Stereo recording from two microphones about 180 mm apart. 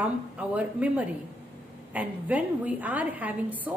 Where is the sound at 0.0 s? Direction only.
10° right (ahead or behind).